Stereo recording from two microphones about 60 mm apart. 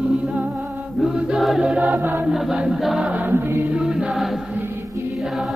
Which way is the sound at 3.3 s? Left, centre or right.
Right.